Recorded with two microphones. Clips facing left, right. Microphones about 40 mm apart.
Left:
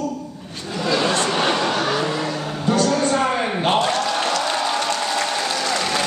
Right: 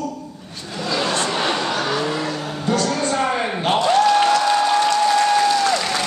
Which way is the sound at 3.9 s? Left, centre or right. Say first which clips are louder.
Right 6 dB; centre.